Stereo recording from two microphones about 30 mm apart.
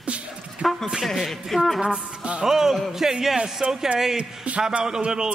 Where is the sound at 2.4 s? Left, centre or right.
Centre.